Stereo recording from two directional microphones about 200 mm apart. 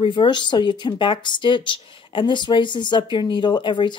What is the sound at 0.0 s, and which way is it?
Speech, 25° left (ahead or behind).